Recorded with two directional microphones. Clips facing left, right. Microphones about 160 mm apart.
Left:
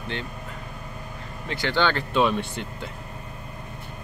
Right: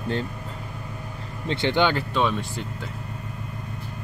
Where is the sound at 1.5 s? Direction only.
25° right (ahead or behind).